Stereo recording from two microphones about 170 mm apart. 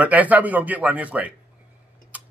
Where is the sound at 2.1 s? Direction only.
10° right (ahead or behind).